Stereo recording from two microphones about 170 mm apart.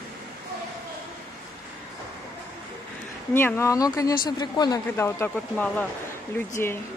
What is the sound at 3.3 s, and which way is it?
Speech, 15° left (ahead or behind).